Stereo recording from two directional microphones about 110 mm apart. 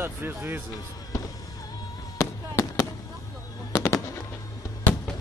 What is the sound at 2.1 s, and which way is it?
Fireworks, 25° left (ahead or behind).